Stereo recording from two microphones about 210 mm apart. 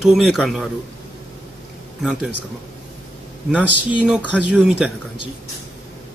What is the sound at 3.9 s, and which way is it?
Speech, 5° right (ahead or behind).